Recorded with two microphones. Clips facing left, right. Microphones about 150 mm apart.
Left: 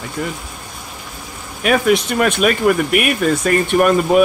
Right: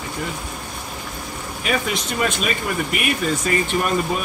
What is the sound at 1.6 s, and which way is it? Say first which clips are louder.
Speech: left 9 dB; 60° left (ahead or behind).